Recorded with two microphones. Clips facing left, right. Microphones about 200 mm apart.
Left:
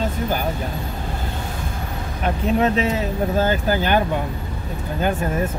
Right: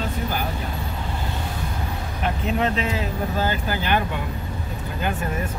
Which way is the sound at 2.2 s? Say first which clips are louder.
Left 4 dB; 45° left (ahead or behind).